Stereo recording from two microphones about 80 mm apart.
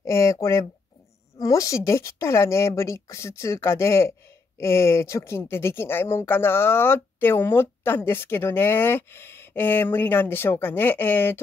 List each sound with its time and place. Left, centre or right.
0.0 s a woman's voice: left